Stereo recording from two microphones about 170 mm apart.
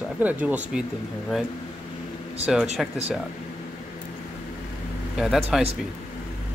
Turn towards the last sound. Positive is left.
turn(degrees=-5)  # may be behind; listen again after turning